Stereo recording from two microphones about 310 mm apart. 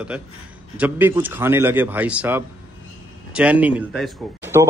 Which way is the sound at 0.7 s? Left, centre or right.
Centre.